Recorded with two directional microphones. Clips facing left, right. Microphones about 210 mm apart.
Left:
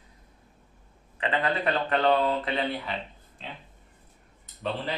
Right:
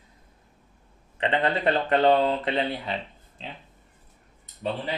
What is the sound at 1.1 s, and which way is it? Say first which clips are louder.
Speech: right 3 dB; 30° right (ahead or behind).